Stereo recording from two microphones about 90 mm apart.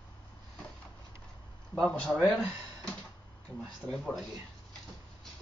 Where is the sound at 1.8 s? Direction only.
10° left (ahead or behind).